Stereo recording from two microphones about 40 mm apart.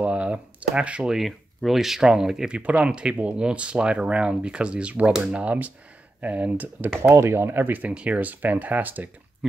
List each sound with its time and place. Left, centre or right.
0.0 s computer keyboard: right
1.2 s speech: centre
2.5 s speech: right
7.0 s speech: right
7.9 s speech: right
8.2 s speech: right